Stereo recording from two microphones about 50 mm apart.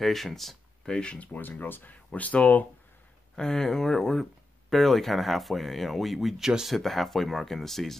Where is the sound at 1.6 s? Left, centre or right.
Left.